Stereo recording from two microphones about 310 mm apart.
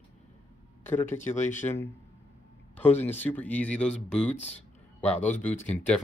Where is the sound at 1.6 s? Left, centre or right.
Centre.